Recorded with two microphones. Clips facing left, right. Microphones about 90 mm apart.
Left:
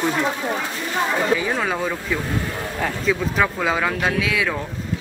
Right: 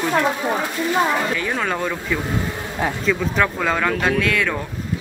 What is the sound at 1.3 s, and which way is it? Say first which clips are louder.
A man's voice: left 1 dB; 10° left (ahead or behind).